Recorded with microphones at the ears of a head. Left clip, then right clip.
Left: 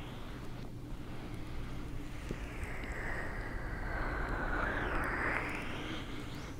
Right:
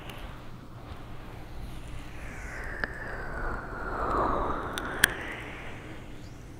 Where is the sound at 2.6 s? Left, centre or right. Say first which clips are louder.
Right 6 dB; right.